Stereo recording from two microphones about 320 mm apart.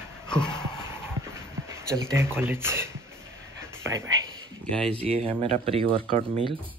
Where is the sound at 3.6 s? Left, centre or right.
Centre.